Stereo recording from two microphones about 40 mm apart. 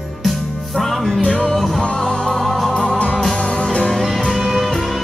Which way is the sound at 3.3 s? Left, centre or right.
Left.